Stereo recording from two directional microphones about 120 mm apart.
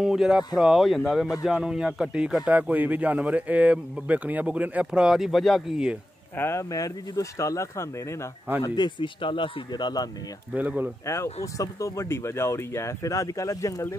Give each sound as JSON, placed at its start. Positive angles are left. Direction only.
{"t": 0.0, "sound": "speech", "side_deg": -5}
{"t": 6.3, "sound": "speech", "side_deg": 20}
{"t": 8.6, "sound": "speech", "side_deg": 35}
{"t": 10.5, "sound": "speech", "side_deg": -15}
{"t": 11.5, "sound": "speech", "side_deg": 25}